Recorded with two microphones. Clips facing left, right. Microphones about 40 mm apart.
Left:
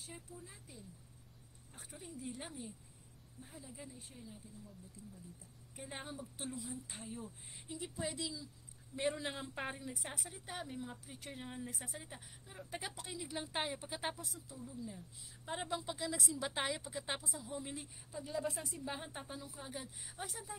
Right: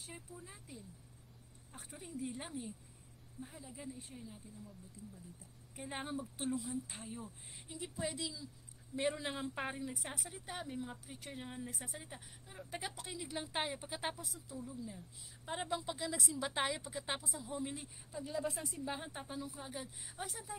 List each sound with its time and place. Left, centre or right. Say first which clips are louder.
0.0 s a sound: right 1 dB; right
2.2 s speech: right 3 dB; centre
5.8 s speech: right 4 dB; centre
6.3 s speech: right 6 dB; right
6.9 s a woman's voice: even; centre